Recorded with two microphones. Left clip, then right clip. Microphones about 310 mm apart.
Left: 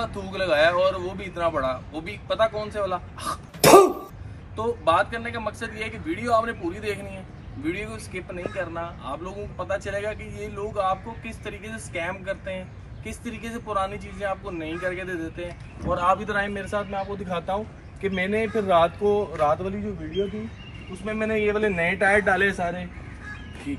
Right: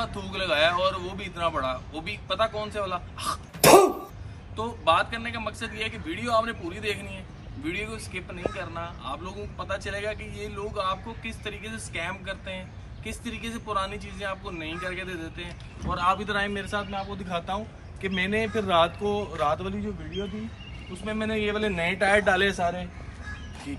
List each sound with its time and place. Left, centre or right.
0.0 s a man's voice: centre
3.6 s throat clearing: centre
4.6 s a man's voice: centre
21.0 s a man's voice: centre
22.4 s a man's voice: right